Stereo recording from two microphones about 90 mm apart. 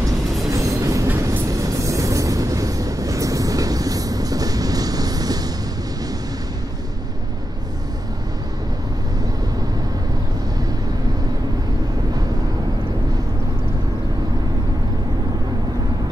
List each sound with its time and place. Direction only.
0.5 s train: 40° right (ahead or behind)